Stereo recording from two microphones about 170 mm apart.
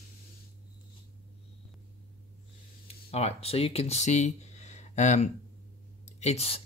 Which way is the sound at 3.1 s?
35° left (ahead or behind).